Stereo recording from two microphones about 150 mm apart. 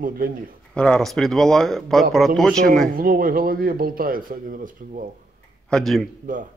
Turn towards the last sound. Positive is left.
turn(degrees=-60)  # may be behind; listen again after turning